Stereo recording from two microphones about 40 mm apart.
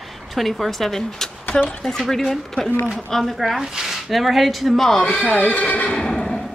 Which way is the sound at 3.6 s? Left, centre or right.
Centre.